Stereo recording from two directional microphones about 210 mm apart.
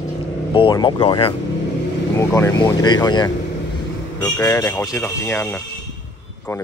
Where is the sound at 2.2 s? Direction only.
15° left (ahead or behind).